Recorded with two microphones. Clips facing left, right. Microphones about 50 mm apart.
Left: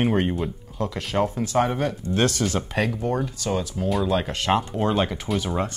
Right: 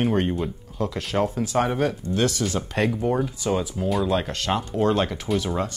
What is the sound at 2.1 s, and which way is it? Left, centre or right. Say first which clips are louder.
Speech: left 1 dB; left.